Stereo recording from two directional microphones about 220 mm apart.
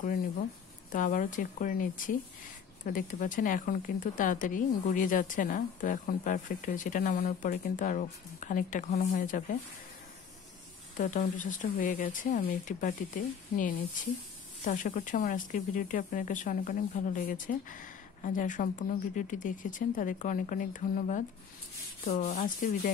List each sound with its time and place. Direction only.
0.9 s speech: 35° left (ahead or behind)
11.0 s speech: 35° left (ahead or behind)